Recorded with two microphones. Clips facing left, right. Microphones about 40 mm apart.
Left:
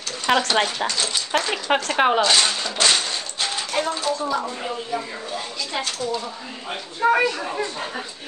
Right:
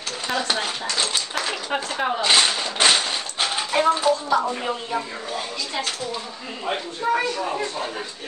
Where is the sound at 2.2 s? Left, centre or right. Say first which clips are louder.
Even; right.